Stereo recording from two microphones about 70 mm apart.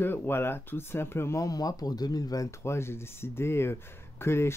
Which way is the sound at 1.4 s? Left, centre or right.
Left.